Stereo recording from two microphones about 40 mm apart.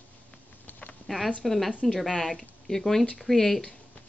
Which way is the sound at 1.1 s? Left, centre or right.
Centre.